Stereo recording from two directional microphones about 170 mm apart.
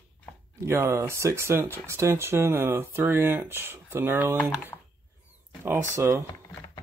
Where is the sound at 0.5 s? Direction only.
15° right (ahead or behind).